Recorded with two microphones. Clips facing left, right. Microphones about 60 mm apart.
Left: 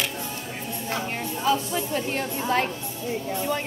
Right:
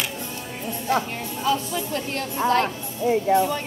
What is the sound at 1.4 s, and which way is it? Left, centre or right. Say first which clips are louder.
A woman's voice: even; centre.